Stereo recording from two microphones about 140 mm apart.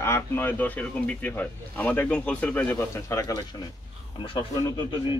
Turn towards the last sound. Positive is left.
turn(degrees=35)  # may be behind; listen again after turning